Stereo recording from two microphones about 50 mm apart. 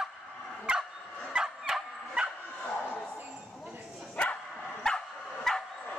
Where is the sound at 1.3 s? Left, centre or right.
Centre.